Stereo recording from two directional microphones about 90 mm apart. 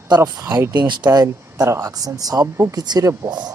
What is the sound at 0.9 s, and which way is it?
Speech, 50° right (ahead or behind).